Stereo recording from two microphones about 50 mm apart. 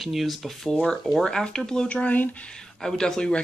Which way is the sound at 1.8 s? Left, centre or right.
Left.